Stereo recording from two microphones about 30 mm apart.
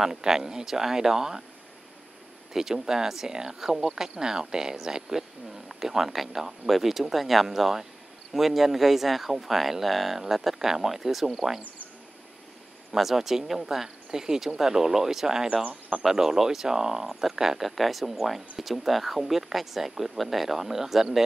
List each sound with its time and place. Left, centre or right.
0.0 s speech: centre
2.5 s speech: centre
12.9 s speech: centre
17.6 s speech: centre